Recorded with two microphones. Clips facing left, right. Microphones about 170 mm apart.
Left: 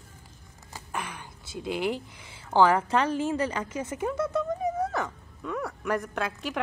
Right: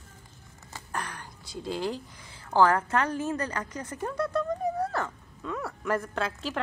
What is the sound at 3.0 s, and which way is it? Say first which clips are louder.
Speech: left 3 dB; 25° left (ahead or behind).